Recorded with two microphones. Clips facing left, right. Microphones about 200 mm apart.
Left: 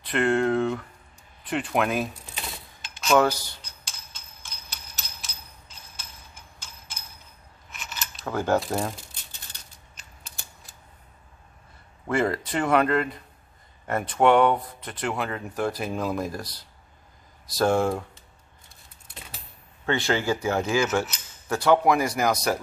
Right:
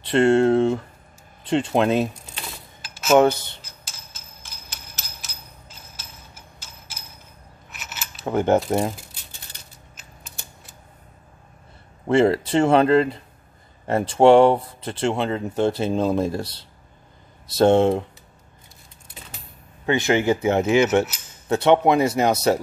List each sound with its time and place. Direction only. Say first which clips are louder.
0.0 s speech: right 7 dB; 30° right (ahead or behind)
3.1 s speech: right 5 dB; 25° right (ahead or behind)
3.8 s a sound: right 2 dB; 5° right (ahead or behind)
7.7 s scissors: even; 5° right (ahead or behind)
8.3 s speech: right 5 dB; 20° right (ahead or behind)
12.1 s speech: right 8 dB; 25° right (ahead or behind)
19.9 s speech: right 5 dB; 20° right (ahead or behind)